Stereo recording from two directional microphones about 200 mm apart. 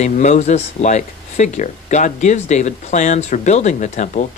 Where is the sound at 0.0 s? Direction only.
35° left (ahead or behind).